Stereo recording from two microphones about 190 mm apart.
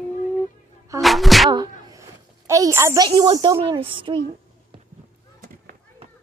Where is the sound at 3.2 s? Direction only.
20° right (ahead or behind).